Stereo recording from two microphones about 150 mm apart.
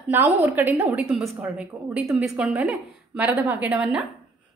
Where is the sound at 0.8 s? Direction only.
Centre (ahead or behind).